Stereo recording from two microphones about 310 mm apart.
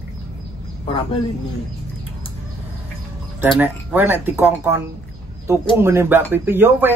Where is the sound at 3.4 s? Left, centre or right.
Centre.